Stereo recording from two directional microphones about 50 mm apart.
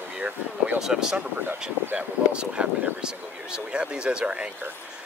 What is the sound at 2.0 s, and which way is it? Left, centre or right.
Speech, right.